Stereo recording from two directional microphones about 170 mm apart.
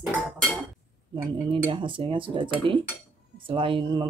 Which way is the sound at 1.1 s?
30° right (ahead or behind).